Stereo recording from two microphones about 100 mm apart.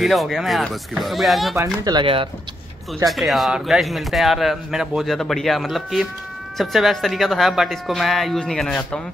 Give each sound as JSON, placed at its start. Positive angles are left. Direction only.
{"t": 0.0, "sound": "a man's voice", "side_deg": 0}
{"t": 1.6, "sound": "speech", "side_deg": -40}
{"t": 3.1, "sound": "a man's voice", "side_deg": 0}